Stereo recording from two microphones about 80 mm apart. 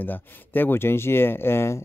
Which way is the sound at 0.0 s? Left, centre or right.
Left.